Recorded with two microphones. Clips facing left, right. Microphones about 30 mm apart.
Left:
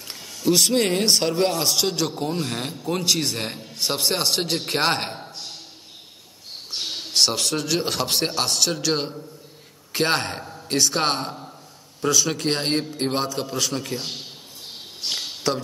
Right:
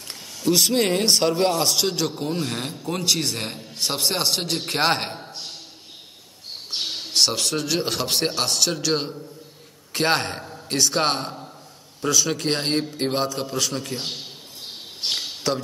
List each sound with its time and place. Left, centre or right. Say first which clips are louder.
0.5 s a man's voice: even; centre
6.9 s a man's voice: left 1 dB; centre
15.0 s speech: right 2 dB; right
15.5 s a man's voice: even; centre